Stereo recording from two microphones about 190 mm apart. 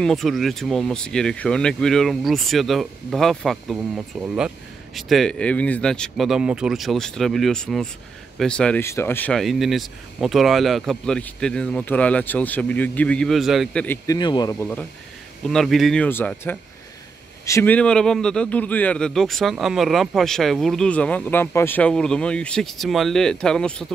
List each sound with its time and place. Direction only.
0.0 s a man's voice: centre (ahead or behind)
13.8 s a man's voice: 20° left (ahead or behind)